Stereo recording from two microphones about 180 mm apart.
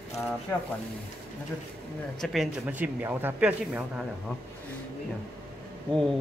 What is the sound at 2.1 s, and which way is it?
Speech, centre (ahead or behind).